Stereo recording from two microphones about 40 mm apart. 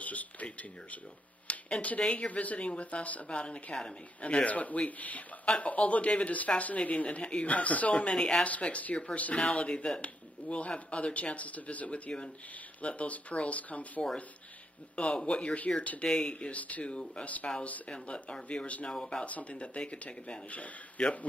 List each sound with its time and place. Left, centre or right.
0.0 s a sound: left
2.0 s speech: left
3.3 s speech: left
7.9 s speech: left
8.5 s speech: left
15.0 s speech: left
16.0 s speech: left
16.3 s speech: left
17.8 s speech: left
18.9 s speech: centre
19.2 s speech: left